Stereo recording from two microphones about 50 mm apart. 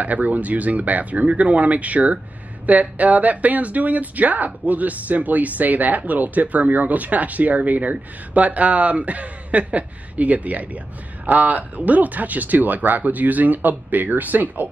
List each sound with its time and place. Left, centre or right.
0.0 s speech: right